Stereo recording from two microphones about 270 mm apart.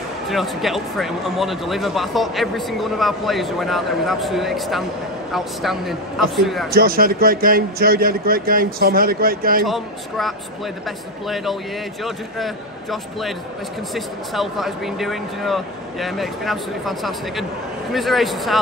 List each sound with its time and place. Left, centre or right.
0.3 s speech: centre
6.7 s a man's voice: right
9.7 s speech: centre